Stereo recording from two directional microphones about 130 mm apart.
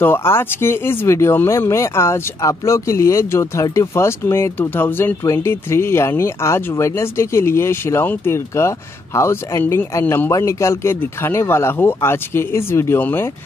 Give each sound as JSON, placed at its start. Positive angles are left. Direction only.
{"t": 0.0, "sound": "speech", "side_deg": 15}